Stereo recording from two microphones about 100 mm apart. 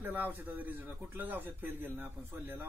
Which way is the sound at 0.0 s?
15° right (ahead or behind).